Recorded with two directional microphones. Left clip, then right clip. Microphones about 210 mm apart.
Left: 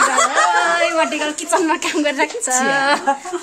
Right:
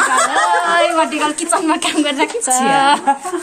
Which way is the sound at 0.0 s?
20° left (ahead or behind).